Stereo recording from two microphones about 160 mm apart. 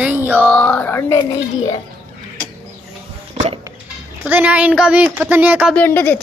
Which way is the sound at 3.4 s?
40° right (ahead or behind).